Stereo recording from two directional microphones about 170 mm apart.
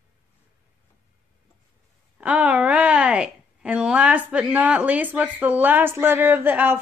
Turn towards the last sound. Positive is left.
turn(degrees=-10)  # may be behind; listen again after turning